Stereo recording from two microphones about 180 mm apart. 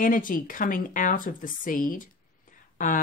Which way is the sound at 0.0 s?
50° left (ahead or behind).